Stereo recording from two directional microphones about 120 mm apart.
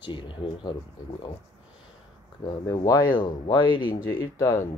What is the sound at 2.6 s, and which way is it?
Speech, 30° left (ahead or behind).